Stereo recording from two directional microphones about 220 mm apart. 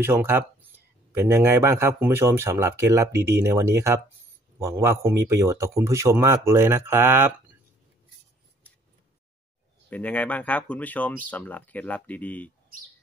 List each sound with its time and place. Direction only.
0.0 s speech: 10° right (ahead or behind)
9.8 s speech: 5° left (ahead or behind)